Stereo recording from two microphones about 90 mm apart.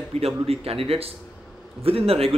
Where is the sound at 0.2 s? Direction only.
90° right.